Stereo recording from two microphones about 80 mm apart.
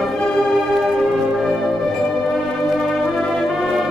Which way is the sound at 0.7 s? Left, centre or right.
Centre.